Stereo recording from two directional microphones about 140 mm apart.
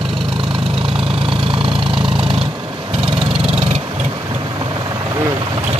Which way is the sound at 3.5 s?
50° right (ahead or behind).